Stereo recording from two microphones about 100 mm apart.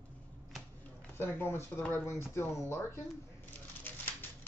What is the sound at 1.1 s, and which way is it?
Speech, 25° left (ahead or behind).